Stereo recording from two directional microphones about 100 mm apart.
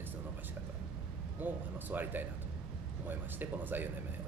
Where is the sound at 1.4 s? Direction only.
20° right (ahead or behind).